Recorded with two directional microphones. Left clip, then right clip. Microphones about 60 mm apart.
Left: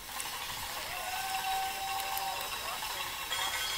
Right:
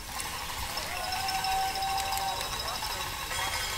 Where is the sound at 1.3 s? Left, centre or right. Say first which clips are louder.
Right 4 dB; left.